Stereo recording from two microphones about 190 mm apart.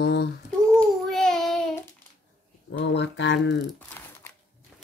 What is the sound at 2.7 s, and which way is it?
Speech, 65° left (ahead or behind).